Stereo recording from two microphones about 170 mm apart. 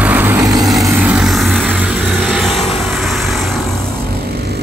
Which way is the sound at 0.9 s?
5° right (ahead or behind).